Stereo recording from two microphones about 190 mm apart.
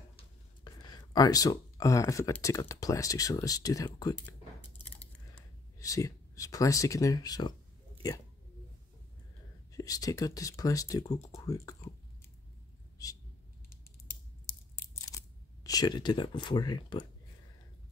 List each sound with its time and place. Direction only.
0.7 s speech: 20° left (ahead or behind)
5.8 s speech: 15° left (ahead or behind)
9.7 s speech: 20° left (ahead or behind)
13.0 s a sound: 20° left (ahead or behind)
15.0 s speech: 20° left (ahead or behind)